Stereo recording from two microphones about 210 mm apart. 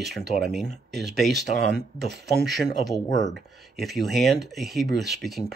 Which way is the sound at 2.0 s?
55° right (ahead or behind).